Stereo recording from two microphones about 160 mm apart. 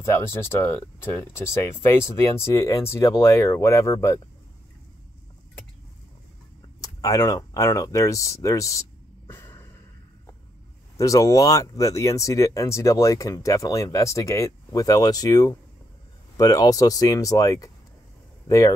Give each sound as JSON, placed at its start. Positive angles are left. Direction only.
{"t": 0.0, "sound": "speech", "side_deg": 15}
{"t": 6.8, "sound": "speech", "side_deg": 20}
{"t": 9.3, "sound": "a sound", "side_deg": 15}
{"t": 11.0, "sound": "speech", "side_deg": 20}